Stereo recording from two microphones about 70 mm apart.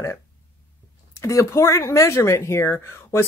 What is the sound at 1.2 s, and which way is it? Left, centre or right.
Speech, left.